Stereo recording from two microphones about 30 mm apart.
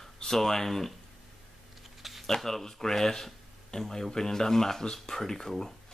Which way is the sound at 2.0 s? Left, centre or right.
Centre.